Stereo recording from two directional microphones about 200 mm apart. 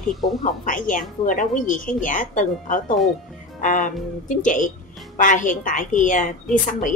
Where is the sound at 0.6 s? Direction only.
40° left (ahead or behind).